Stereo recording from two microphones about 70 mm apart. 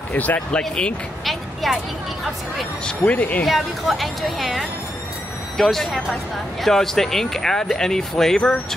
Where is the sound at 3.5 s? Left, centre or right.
Centre.